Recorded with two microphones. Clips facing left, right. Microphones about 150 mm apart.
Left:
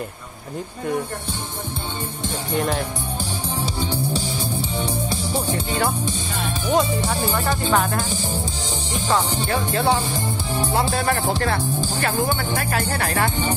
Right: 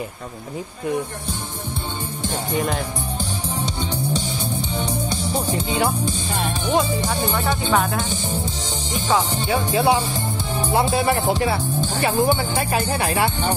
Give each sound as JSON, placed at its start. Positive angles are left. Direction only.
{"t": 2.2, "sound": "speech", "side_deg": 0}
{"t": 3.6, "sound": "music", "side_deg": 5}
{"t": 5.7, "sound": "speech", "side_deg": 0}
{"t": 11.3, "sound": "speech", "side_deg": -5}